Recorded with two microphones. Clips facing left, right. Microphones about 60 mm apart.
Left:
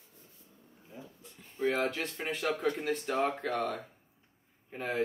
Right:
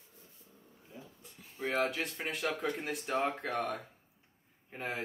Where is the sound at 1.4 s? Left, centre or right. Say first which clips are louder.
Left 2 dB; centre.